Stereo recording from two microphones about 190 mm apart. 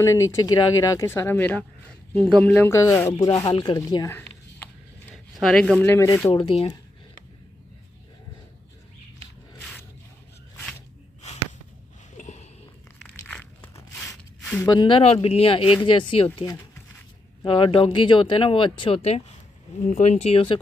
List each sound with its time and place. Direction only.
0.0 s speech: 15° left (ahead or behind)
4.6 s a sound: 10° left (ahead or behind)
5.3 s speech: centre (ahead or behind)
5.9 s speech: 15° left (ahead or behind)
12.2 s a sound: 40° left (ahead or behind)
13.1 s walk: 10° left (ahead or behind)
14.4 s a sound: 5° left (ahead or behind)
14.7 s speech: 25° left (ahead or behind)
17.5 s speech: 25° left (ahead or behind)